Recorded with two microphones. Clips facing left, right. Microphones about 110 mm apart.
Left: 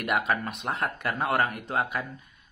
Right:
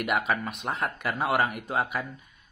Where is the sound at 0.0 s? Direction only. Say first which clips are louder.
Even; centre (ahead or behind).